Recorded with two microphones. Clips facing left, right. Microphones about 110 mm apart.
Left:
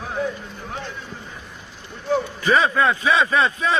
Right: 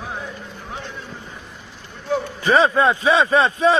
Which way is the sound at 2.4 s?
30° right (ahead or behind).